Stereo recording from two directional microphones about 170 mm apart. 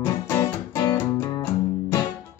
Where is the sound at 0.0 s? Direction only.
15° left (ahead or behind).